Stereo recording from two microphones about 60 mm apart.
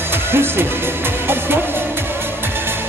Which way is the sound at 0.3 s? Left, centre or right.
Right.